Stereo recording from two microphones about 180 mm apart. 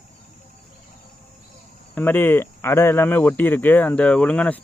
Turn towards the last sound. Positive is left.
turn(degrees=5)  # may be behind; listen again after turning